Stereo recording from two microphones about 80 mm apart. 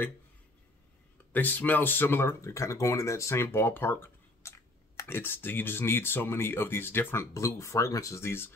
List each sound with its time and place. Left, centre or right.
1.3 s speech: left
7.3 s speech: left